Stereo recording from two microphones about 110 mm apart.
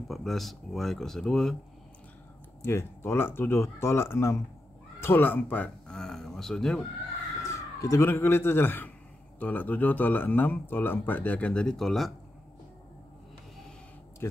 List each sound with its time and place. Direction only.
0.1 s speech: centre (ahead or behind)
2.6 s speech: 20° left (ahead or behind)
5.9 s speech: 5° left (ahead or behind)
7.4 s a sound: 30° left (ahead or behind)
8.1 s speech: 20° left (ahead or behind); by 12.1 s centre (ahead or behind)